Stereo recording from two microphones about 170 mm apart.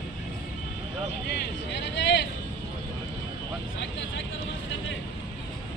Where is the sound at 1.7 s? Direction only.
90° left.